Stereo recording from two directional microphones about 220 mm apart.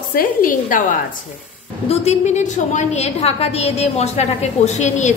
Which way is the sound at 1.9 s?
30° left (ahead or behind).